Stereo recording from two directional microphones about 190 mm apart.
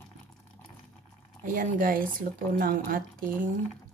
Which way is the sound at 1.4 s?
45° right (ahead or behind).